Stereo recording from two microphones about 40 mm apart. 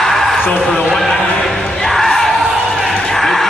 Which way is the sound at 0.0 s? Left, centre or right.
Centre.